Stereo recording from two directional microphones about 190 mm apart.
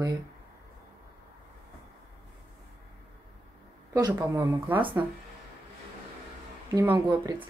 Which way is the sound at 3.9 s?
15° right (ahead or behind).